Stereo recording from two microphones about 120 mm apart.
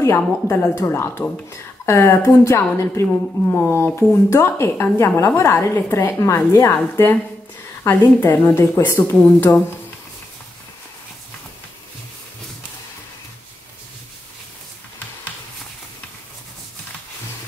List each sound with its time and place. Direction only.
0.0 s a woman's voice: 20° left (ahead or behind)